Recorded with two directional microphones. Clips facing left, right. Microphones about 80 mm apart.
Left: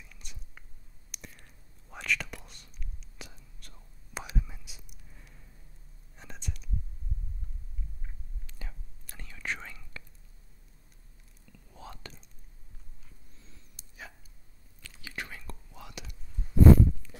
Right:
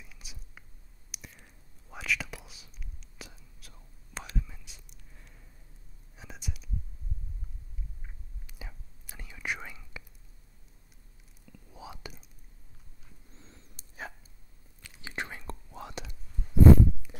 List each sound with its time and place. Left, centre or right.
0.0 s whispering: centre
8.5 s whispering: centre
11.4 s whispering: centre
13.3 s dog: right
14.8 s whispering: right
17.0 s a sound: centre